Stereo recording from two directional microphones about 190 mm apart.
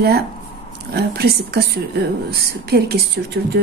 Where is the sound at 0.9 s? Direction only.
55° right (ahead or behind).